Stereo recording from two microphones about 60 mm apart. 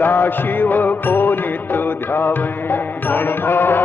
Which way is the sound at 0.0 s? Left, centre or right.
Left.